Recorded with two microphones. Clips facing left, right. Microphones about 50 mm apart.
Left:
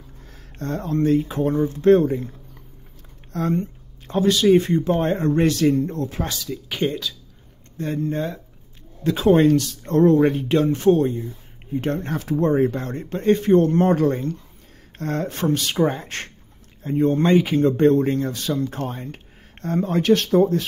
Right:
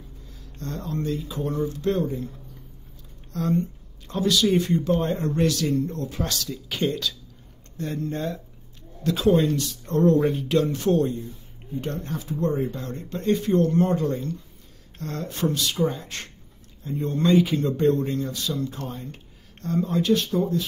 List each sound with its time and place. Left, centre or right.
0.6 s speech: left
3.3 s speech: left
6.2 s speech: centre
7.7 s speech: left
8.0 s speech: centre
9.0 s speech: left
10.1 s speech: left
10.5 s speech: left
10.9 s speech: centre
11.7 s speech: left